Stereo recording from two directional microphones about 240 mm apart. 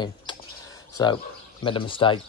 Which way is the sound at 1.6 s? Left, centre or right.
Left.